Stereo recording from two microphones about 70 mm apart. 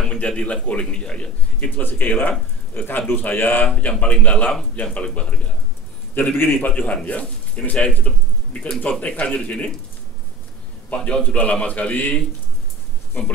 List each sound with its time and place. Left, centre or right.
0.0 s a man's voice: centre; by 3.7 s left
3.7 s a man's voice: centre
10.9 s a man's voice: centre